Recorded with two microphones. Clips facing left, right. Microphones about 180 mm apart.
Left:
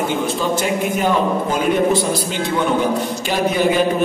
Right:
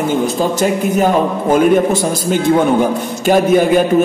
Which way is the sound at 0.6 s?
45° right (ahead or behind).